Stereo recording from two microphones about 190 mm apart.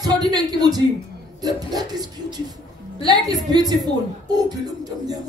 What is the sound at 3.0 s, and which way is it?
Speech, 20° right (ahead or behind).